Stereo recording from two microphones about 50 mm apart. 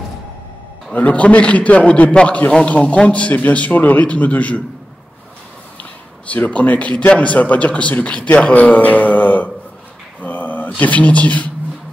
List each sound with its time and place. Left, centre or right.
0.9 s a man's voice: left
6.3 s a man's voice: left
10.2 s a sound: left
10.8 s speech: left